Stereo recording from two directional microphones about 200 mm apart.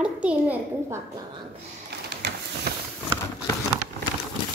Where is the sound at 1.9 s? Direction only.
55° right (ahead or behind).